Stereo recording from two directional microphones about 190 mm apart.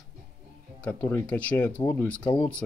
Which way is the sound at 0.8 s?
5° left (ahead or behind).